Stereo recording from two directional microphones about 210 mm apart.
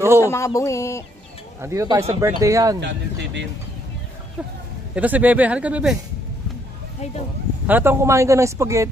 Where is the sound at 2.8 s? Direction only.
55° right (ahead or behind).